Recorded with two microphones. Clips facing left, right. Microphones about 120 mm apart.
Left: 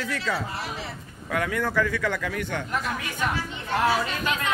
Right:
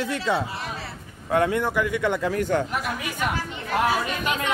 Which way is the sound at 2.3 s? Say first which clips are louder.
Right 7 dB; 40° right (ahead or behind).